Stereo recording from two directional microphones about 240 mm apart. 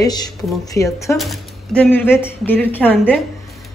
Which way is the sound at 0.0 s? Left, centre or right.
Centre.